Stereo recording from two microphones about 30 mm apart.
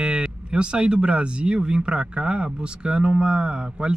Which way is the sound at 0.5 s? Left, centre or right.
Right.